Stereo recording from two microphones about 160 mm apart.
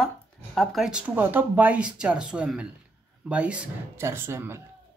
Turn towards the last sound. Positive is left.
turn(degrees=-15)  # may be behind; listen again after turning